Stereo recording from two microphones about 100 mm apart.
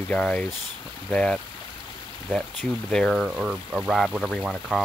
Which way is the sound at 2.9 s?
5° left (ahead or behind).